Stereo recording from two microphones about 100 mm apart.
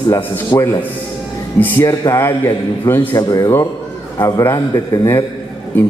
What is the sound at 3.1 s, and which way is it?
Mantra, 45° left (ahead or behind).